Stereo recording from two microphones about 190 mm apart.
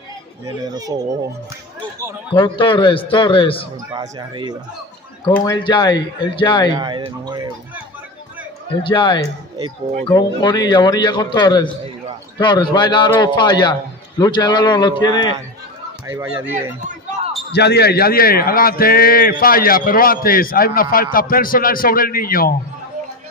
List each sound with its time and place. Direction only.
0.5 s speech: 20° right (ahead or behind)
2.3 s a man's voice: 25° left (ahead or behind)
3.9 s speech: 25° right (ahead or behind)
5.4 s a man's voice: 20° left (ahead or behind)
7.2 s speech: 20° right (ahead or behind)
8.8 s a man's voice: 25° left (ahead or behind)
16.1 s speech: 10° right (ahead or behind)
17.5 s a man's voice: 60° left (ahead or behind)